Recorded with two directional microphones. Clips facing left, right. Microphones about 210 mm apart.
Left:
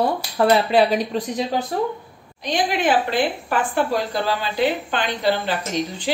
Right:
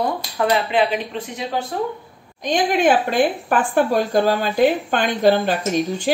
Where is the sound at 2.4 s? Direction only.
50° right (ahead or behind).